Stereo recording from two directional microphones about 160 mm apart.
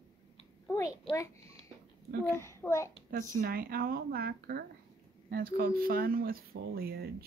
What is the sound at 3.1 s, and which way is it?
Speech, 65° right (ahead or behind).